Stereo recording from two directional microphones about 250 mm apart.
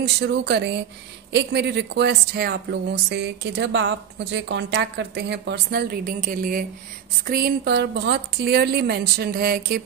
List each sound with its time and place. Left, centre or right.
0.0 s a woman's voice: right